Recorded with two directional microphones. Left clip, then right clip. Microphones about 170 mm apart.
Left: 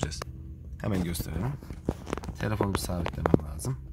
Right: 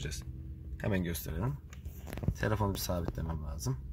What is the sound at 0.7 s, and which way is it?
Speech, 10° left (ahead or behind).